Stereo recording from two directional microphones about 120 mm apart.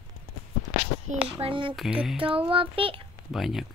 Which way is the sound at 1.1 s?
60° right (ahead or behind).